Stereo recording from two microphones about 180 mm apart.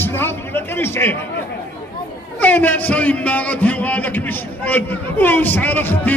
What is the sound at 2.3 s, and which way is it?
A man's voice, 10° left (ahead or behind).